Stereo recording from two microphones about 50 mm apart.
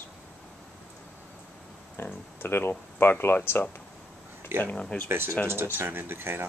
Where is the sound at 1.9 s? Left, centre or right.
Left.